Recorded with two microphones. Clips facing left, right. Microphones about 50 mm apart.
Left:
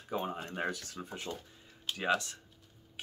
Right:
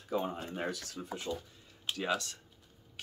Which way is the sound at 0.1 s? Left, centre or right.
Left.